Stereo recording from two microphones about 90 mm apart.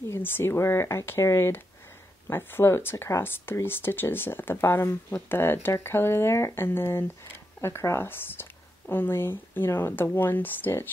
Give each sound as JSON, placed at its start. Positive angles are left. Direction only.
{"t": 0.1, "sound": "speech", "side_deg": 25}